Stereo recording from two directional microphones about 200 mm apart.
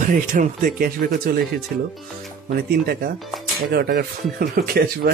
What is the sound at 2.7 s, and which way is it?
Speech, 50° right (ahead or behind).